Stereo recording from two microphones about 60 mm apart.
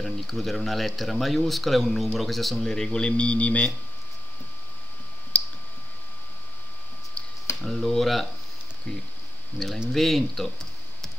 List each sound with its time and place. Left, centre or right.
0.0 s speech: centre; by 3.7 s left
5.3 s clicking: left
7.2 s a sound: centre
7.6 s speech: centre
9.9 s speech: centre